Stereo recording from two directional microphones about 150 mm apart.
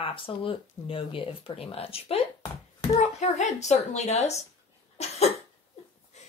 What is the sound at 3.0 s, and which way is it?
A woman's voice, 50° left (ahead or behind).